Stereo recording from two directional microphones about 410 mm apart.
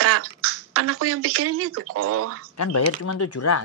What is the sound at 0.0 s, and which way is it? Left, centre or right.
Speech, right.